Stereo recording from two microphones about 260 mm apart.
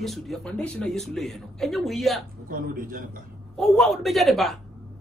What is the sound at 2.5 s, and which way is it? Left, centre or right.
Speech, right.